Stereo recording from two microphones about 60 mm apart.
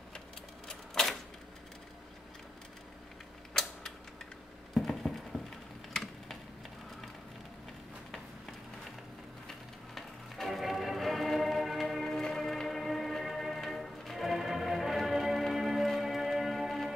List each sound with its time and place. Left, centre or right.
0.7 s typewriter: centre
4.7 s a sound: centre
9.9 s music: centre